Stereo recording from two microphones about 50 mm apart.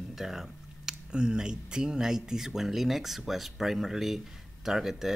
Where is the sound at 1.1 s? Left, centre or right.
Centre.